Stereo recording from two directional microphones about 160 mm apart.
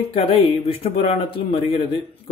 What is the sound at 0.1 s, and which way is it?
A man's voice, 35° left (ahead or behind).